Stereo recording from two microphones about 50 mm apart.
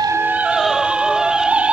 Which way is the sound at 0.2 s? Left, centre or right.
Right.